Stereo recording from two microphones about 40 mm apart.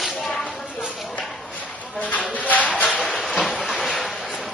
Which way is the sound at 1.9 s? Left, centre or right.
Left.